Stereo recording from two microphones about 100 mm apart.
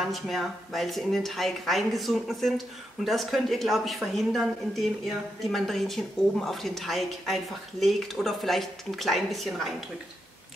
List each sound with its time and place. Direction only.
0.0 s speech: centre (ahead or behind)